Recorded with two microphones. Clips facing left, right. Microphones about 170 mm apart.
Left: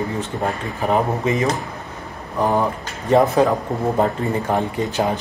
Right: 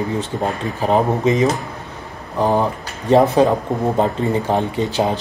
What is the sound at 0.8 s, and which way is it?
Speech, 20° right (ahead or behind).